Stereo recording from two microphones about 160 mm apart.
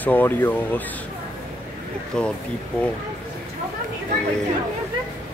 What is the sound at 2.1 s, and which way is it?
Speech, 5° left (ahead or behind).